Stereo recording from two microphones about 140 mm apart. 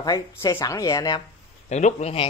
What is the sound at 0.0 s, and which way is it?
Speech, 25° left (ahead or behind).